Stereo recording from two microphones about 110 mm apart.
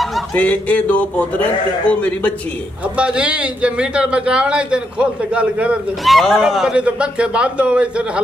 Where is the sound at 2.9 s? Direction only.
10° right (ahead or behind).